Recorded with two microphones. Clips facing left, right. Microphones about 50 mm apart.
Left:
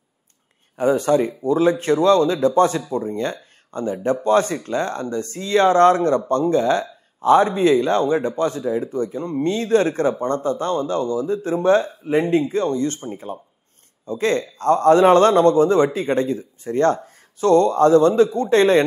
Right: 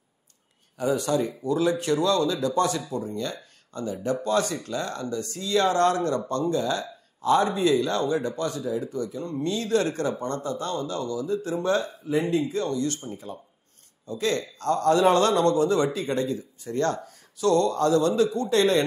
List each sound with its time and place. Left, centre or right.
0.7 s speech: left